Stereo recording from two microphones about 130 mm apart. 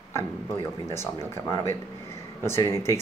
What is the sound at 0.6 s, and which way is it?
Speech, 20° left (ahead or behind).